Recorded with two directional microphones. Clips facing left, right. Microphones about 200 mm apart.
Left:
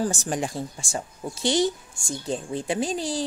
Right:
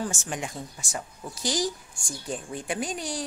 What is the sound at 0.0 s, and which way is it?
Speech, 35° left (ahead or behind).